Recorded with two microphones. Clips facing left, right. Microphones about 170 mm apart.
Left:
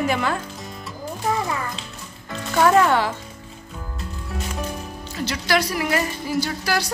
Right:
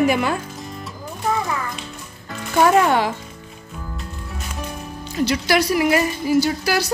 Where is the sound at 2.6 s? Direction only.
15° right (ahead or behind).